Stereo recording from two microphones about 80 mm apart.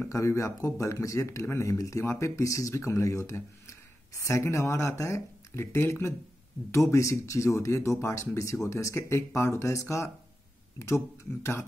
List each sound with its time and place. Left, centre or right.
0.1 s speech: left